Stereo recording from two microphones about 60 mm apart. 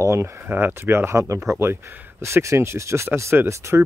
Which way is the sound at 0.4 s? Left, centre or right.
Right.